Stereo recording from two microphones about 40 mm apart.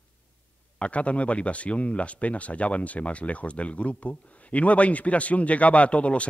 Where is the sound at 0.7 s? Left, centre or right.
Left.